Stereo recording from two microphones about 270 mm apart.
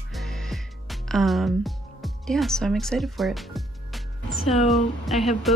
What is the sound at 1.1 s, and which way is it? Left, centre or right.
A woman's voice, centre.